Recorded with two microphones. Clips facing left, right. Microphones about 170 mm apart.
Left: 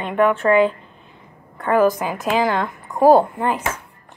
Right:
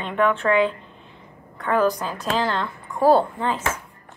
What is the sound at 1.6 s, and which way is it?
A woman's voice, 10° left (ahead or behind).